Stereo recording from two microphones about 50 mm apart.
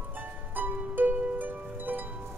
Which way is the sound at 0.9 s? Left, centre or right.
Right.